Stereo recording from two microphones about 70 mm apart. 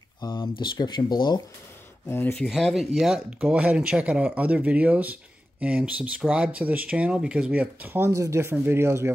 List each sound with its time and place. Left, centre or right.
0.2 s speech: left
2.0 s speech: left
2.5 s speech: centre
3.3 s speech: centre
7.8 s speech: right
8.1 s speech: right